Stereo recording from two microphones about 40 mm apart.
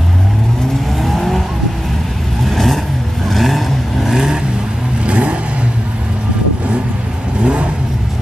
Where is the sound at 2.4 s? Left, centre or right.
Centre.